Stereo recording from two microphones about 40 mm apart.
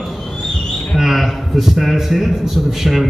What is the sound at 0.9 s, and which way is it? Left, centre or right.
A man's voice, centre.